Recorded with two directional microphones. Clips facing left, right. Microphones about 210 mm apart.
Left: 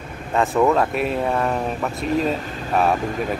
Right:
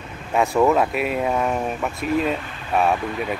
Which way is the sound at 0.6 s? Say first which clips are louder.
Even; centre (ahead or behind).